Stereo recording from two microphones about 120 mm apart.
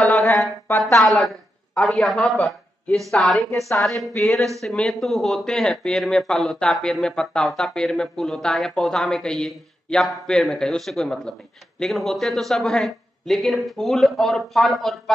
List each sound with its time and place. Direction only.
0.0 s a sound: centre (ahead or behind)
0.7 s speech: 20° left (ahead or behind)
1.0 s a man's voice: centre (ahead or behind)